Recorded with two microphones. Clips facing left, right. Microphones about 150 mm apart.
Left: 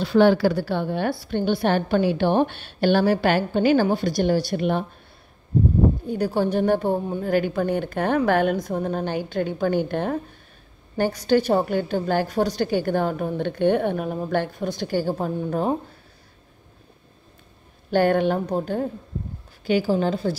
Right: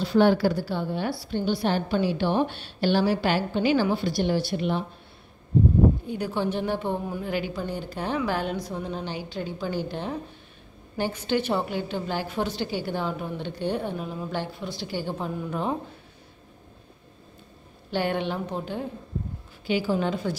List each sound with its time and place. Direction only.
0.0 s a woman's voice: 75° left (ahead or behind); by 4.8 s 55° left (ahead or behind)
6.0 s a woman's voice: 40° left (ahead or behind)
11.0 s a woman's voice: 40° left (ahead or behind)
17.9 s a woman's voice: 45° left (ahead or behind)